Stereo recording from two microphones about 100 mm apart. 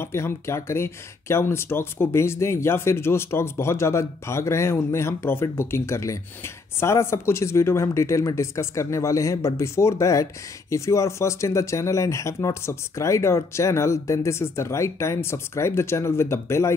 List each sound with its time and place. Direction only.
0.0 s speech: 25° left (ahead or behind)